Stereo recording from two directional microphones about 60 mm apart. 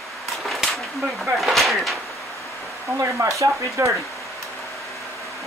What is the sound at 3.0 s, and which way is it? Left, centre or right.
Speech, right.